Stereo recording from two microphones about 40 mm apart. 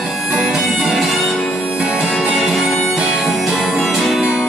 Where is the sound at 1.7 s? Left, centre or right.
Right.